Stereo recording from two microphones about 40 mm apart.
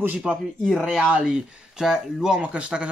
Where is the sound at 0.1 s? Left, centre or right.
Right.